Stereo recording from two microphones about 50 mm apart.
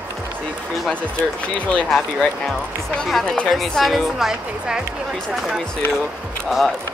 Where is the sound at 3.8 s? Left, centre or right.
Centre.